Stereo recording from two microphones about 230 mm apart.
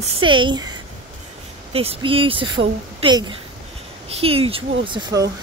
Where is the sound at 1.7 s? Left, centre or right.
Right.